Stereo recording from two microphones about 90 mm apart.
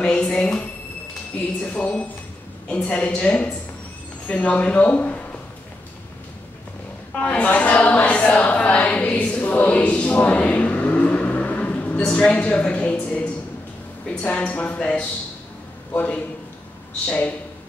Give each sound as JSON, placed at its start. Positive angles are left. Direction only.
{"t": 0.0, "sound": "a woman's voice", "side_deg": 10}
{"t": 7.2, "sound": "a sound", "side_deg": 15}
{"t": 12.0, "sound": "a woman's voice", "side_deg": 10}